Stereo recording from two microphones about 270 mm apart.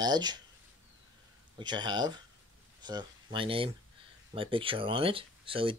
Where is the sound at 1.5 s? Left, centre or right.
Centre.